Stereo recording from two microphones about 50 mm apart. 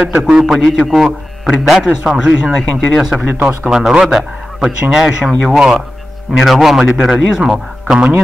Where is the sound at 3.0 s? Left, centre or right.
Centre.